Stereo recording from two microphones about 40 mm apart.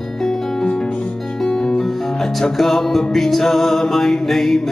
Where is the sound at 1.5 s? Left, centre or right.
Centre.